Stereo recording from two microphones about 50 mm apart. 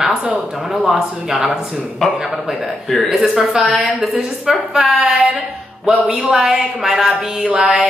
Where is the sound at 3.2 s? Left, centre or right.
Centre.